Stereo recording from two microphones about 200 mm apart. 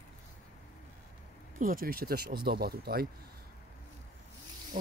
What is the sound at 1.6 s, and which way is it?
Speech, 45° right (ahead or behind).